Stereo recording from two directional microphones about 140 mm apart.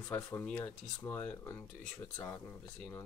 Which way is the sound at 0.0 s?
20° left (ahead or behind).